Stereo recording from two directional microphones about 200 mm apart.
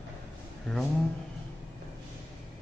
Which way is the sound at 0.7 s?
5° left (ahead or behind).